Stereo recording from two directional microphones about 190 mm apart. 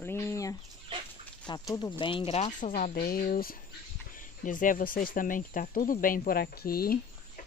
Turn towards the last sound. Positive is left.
turn(degrees=50)  # may be behind; listen again after turning